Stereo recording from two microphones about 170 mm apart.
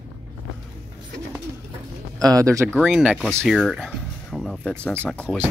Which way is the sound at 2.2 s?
20° right (ahead or behind).